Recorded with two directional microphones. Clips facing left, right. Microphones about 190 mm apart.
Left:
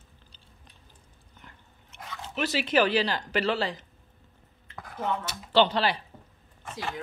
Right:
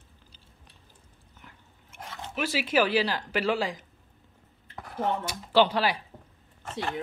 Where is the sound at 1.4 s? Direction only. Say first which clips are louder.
Even; 10° right (ahead or behind).